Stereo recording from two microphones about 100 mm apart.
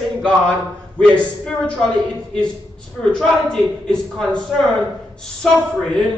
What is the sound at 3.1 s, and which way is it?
Speech, 5° left (ahead or behind).